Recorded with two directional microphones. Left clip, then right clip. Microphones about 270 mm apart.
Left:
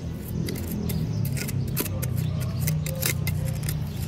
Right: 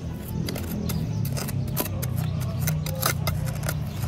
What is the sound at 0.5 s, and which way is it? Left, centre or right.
Music, centre.